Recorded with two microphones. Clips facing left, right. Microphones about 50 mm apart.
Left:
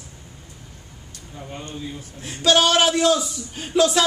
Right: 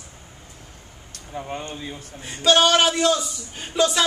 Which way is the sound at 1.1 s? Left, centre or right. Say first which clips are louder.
Right 5 dB; right.